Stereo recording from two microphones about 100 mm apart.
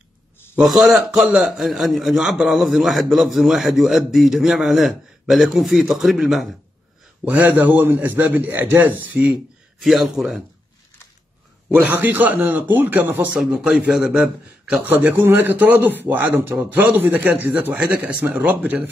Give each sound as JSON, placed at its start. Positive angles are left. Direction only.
{"t": 0.6, "sound": "a man's voice", "side_deg": 0}
{"t": 7.2, "sound": "a man's voice", "side_deg": -15}
{"t": 9.8, "sound": "a man's voice", "side_deg": 0}
{"t": 11.7, "sound": "a man's voice", "side_deg": -15}
{"t": 13.4, "sound": "a man's voice", "side_deg": -5}
{"t": 14.9, "sound": "a man's voice", "side_deg": -15}